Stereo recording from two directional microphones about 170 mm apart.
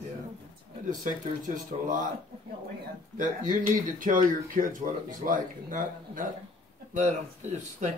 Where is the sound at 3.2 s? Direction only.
50° right (ahead or behind).